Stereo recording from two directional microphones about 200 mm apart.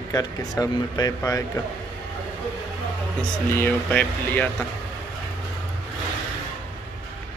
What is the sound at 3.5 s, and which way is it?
Speech, 10° left (ahead or behind).